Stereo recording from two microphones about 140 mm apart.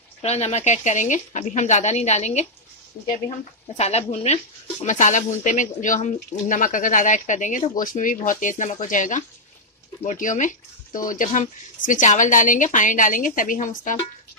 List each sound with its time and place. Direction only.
0.2 s speech: 50° left (ahead or behind)
4.8 s speech: 60° left (ahead or behind)